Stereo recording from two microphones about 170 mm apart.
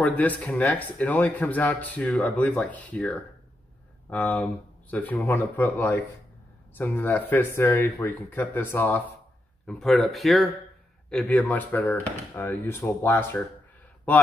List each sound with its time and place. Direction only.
0.0 s speech: 10° left (ahead or behind)